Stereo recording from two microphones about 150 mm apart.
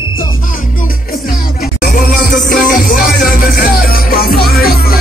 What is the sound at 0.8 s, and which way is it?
Music, 70° left (ahead or behind).